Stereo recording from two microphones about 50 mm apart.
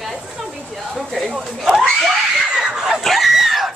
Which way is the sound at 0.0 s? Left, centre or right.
Centre.